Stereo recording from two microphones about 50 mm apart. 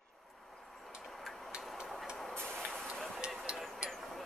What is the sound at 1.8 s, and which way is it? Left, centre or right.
Vehicle, centre.